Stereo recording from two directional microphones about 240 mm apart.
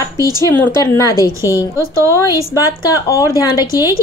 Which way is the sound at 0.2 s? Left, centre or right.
Centre.